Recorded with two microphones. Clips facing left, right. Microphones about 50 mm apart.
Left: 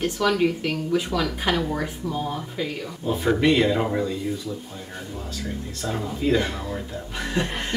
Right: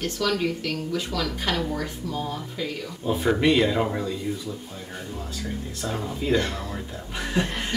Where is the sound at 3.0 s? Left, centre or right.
Centre.